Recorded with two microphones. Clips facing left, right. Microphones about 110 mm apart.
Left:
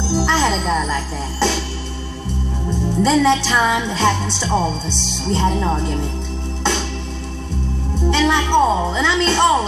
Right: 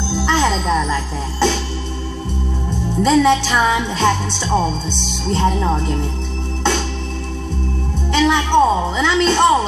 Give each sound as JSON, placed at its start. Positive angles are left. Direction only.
{"t": 0.2, "sound": "music", "side_deg": 0}
{"t": 3.0, "sound": "music", "side_deg": -5}
{"t": 5.3, "sound": "speech", "side_deg": -5}
{"t": 8.1, "sound": "speech", "side_deg": -5}